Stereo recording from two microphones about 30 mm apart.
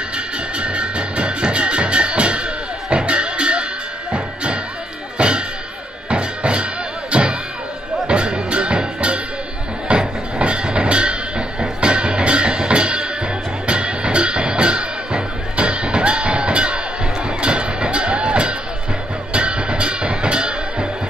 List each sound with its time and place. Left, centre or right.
0.6 s music: right